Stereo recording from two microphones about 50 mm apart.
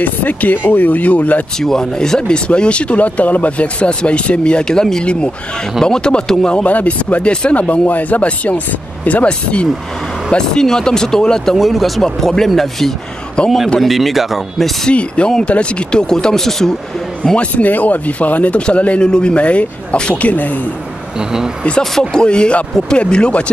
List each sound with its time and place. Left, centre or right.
0.0 s speech: left
1.6 s speech: centre
6.5 s speech: left
10.3 s speech: centre
11.5 s speech: centre
13.4 s speech: left
13.7 s speech: centre
14.9 s speech: left
17.2 s speech: left
22.1 s speech: centre